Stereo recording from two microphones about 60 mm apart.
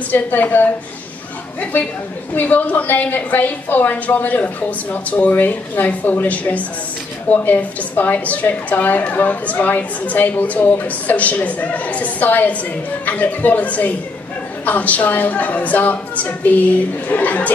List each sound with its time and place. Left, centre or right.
0.1 s a woman's voice: left